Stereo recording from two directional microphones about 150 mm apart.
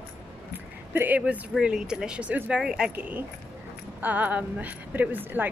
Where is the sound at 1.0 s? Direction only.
10° right (ahead or behind).